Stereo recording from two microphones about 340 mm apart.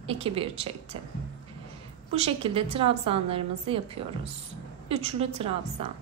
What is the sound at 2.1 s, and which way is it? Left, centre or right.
A woman's voice, centre.